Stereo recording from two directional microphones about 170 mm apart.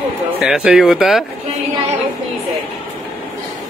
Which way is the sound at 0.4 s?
5° right (ahead or behind).